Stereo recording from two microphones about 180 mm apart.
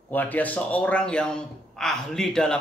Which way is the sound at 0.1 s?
10° left (ahead or behind).